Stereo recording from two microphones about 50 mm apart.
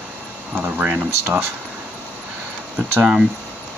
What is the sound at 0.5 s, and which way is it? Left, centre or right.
Speech, right.